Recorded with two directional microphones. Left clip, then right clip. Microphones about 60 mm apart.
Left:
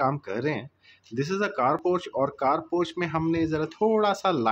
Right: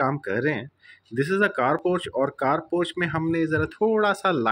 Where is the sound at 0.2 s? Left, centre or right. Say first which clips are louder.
Right 4 dB; right.